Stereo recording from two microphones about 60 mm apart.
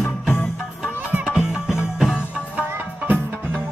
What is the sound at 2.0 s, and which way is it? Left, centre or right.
Music, centre.